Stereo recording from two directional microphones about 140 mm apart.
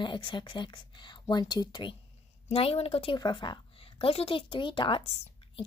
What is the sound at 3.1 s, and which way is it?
A woman's voice, 35° left (ahead or behind).